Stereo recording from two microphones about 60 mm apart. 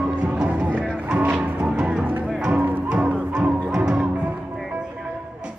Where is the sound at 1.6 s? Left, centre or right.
Centre.